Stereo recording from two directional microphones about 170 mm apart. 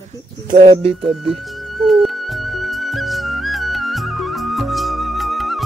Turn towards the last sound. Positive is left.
turn(degrees=0)  # may be behind; listen again after turning